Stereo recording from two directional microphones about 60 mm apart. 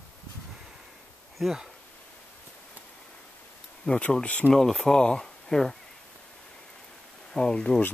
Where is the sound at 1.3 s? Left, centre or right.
Centre.